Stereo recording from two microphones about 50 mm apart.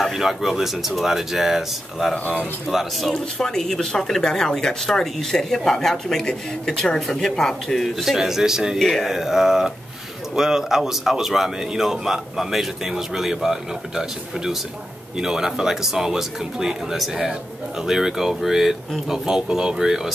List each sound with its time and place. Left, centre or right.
0.0 s speech: centre
2.1 s speech: left
2.7 s speech: centre
3.1 s speech: centre
8.7 s speech: centre